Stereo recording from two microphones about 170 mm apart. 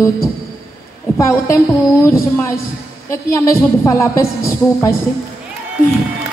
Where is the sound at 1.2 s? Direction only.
15° left (ahead or behind).